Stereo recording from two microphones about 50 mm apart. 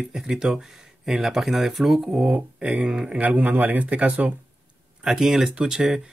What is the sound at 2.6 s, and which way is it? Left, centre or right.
Speech, right.